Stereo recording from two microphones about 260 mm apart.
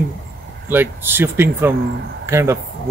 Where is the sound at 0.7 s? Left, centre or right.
Centre.